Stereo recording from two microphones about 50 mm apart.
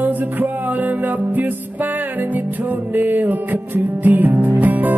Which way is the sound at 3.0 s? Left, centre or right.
Right.